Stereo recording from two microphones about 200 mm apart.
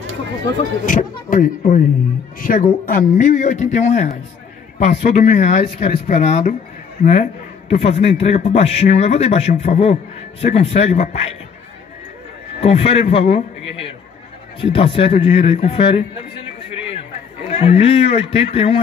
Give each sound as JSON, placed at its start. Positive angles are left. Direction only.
{"t": 0.8, "sound": "speech", "side_deg": 45}
{"t": 12.5, "sound": "a man's voice", "side_deg": 30}